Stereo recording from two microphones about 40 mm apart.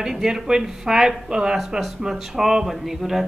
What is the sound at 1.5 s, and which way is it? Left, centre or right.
A man's voice, centre.